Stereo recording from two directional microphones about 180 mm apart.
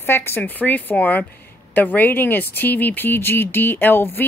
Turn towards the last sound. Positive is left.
turn(degrees=10)  # may be behind; listen again after turning